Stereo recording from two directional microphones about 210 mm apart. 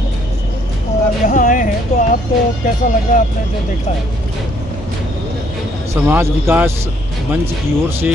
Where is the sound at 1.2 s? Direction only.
40° left (ahead or behind).